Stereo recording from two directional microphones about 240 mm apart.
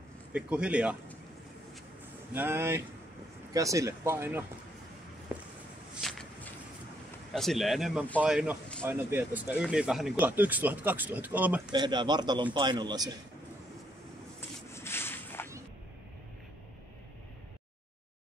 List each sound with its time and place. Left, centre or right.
0.3 s speech: centre
2.3 s speech: centre
5.9 s walk: centre
7.3 s speech: centre
11.7 s speech: centre
14.7 s a sound: centre